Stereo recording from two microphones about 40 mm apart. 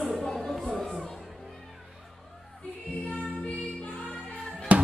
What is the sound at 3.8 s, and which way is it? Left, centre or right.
Music, left.